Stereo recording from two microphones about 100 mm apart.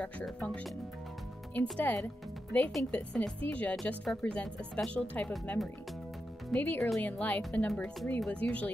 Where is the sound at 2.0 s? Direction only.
15° left (ahead or behind).